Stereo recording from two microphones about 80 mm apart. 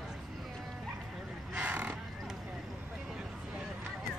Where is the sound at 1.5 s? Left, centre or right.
Centre.